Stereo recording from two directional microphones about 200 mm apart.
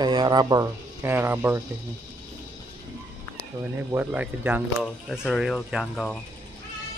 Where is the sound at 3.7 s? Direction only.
10° right (ahead or behind).